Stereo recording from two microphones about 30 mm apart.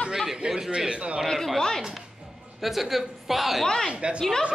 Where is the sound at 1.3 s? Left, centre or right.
Centre.